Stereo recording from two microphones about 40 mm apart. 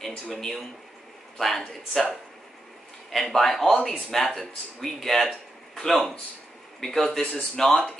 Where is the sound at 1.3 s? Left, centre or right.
Centre.